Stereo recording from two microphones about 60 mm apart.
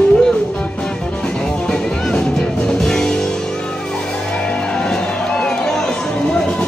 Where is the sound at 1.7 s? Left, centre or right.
Centre.